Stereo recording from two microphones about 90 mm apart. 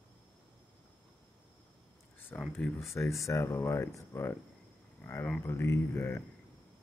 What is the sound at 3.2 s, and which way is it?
Speech, 35° left (ahead or behind).